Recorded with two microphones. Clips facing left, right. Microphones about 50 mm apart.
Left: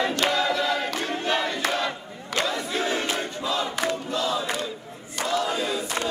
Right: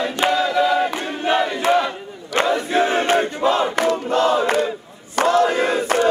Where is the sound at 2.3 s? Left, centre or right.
Right.